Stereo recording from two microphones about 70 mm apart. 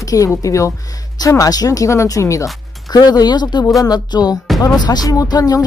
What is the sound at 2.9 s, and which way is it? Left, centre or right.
Speech, left.